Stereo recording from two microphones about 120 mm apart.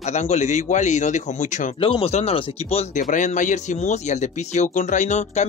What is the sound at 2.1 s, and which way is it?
Speech, 55° left (ahead or behind).